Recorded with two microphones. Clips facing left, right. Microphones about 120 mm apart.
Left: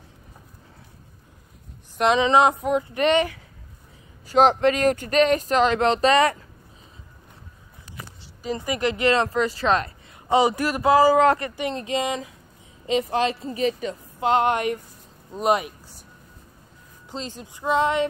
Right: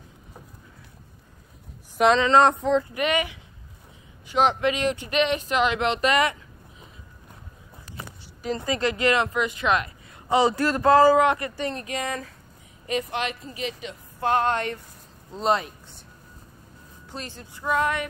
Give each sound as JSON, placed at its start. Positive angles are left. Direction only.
{"t": 2.1, "sound": "speech", "side_deg": 15}
{"t": 2.9, "sound": "speech", "side_deg": 30}
{"t": 4.3, "sound": "speech", "side_deg": 40}
{"t": 8.5, "sound": "child singing", "side_deg": 15}
{"t": 9.2, "sound": "speech", "side_deg": 35}
{"t": 10.2, "sound": "speech", "side_deg": 15}
{"t": 11.1, "sound": "child singing", "side_deg": 25}
{"t": 11.5, "sound": "speech", "side_deg": 15}
{"t": 11.8, "sound": "child singing", "side_deg": 20}
{"t": 12.8, "sound": "speech", "side_deg": 30}
{"t": 14.2, "sound": "speech", "side_deg": 20}
{"t": 17.1, "sound": "child singing", "side_deg": 20}